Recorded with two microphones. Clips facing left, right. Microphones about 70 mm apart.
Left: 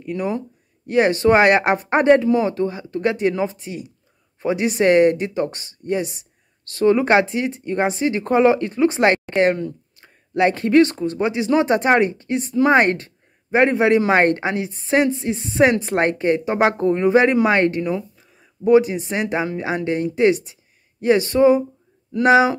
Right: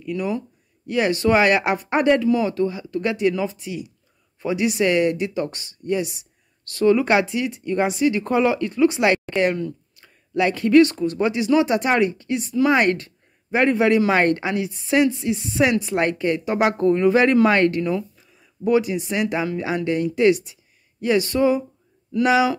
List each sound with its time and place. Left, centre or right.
0.0 s speech: left